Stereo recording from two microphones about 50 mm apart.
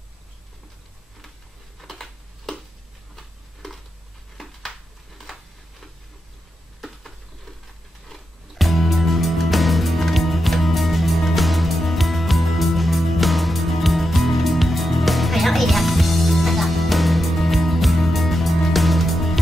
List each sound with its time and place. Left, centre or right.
1.8 s tick-tock: centre
3.2 s a sound: centre
8.1 s music: centre